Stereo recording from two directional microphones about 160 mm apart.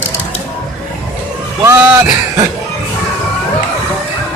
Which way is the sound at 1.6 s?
15° right (ahead or behind).